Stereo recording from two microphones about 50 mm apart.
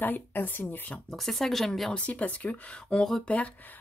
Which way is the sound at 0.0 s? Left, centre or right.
Left.